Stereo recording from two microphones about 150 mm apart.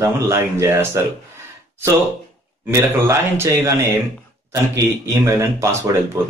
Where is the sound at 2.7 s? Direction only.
15° right (ahead or behind).